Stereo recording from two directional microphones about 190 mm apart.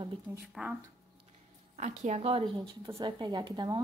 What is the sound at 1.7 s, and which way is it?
Speech, 40° right (ahead or behind).